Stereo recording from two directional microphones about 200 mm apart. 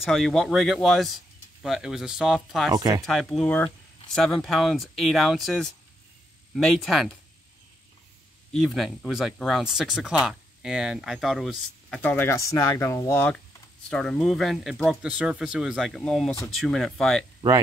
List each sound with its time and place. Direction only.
0.0 s speech: centre (ahead or behind)
2.7 s speech: 20° right (ahead or behind)
3.1 s speech: centre (ahead or behind)
8.5 s speech: centre (ahead or behind)